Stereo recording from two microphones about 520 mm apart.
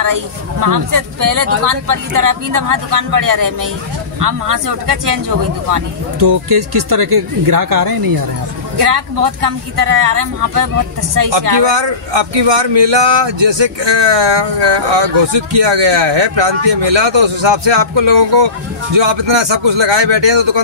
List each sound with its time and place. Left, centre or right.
0.0 s speech: right
11.6 s speech: right